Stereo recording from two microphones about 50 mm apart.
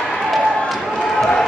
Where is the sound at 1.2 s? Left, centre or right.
Centre.